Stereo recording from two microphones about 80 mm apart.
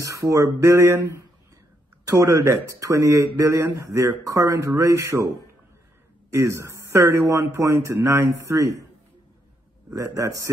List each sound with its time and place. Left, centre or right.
0.0 s a sound: right
0.6 s speech: right
6.3 s speech: right
9.9 s a man's voice: right